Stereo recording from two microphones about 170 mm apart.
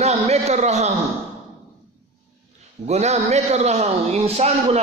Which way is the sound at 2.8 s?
40° right (ahead or behind).